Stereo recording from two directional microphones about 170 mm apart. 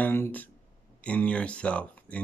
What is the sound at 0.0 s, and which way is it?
Speech, 10° left (ahead or behind).